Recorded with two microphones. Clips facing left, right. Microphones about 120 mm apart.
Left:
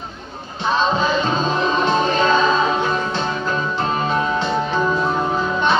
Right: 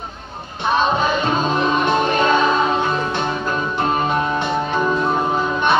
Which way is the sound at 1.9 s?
55° right (ahead or behind).